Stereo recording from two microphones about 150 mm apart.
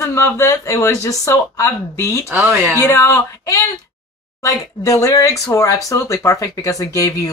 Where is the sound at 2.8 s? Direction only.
20° left (ahead or behind).